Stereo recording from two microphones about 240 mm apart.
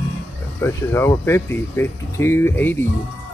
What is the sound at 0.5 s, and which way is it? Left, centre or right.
Speech, centre.